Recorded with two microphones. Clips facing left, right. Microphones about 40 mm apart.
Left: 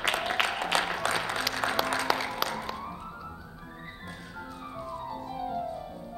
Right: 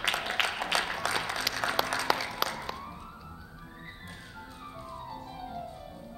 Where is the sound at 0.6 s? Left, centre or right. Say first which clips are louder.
Left 2 dB; left.